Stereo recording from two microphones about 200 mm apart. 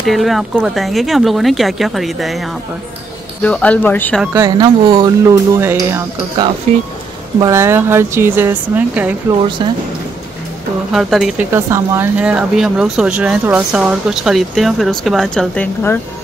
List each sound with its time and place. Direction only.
0.0 s speech: centre (ahead or behind)
3.4 s speech: 5° left (ahead or behind)
4.3 s speech: 20° right (ahead or behind)
10.9 s speech: centre (ahead or behind)
11.5 s speech: 10° right (ahead or behind); by 16.0 s 10° left (ahead or behind)